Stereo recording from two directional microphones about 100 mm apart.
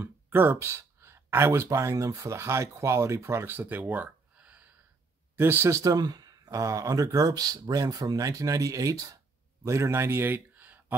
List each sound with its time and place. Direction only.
0.0 s speech: 20° right (ahead or behind)